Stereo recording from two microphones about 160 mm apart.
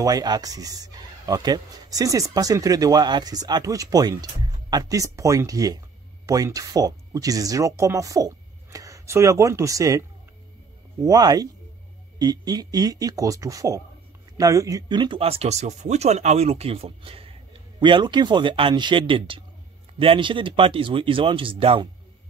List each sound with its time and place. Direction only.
0.0 s speech: 25° right (ahead or behind)